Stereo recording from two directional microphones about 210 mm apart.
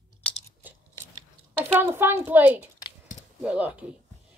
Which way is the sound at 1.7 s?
10° right (ahead or behind).